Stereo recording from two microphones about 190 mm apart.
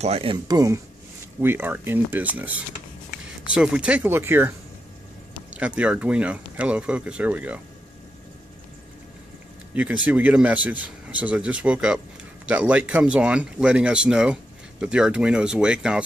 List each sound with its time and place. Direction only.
0.0 s speech: 30° right (ahead or behind); by 4.6 s 10° right (ahead or behind)
5.6 s speech: 5° right (ahead or behind)
10.0 s speech: 10° right (ahead or behind)